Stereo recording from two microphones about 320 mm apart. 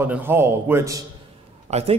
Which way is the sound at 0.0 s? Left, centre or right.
Centre.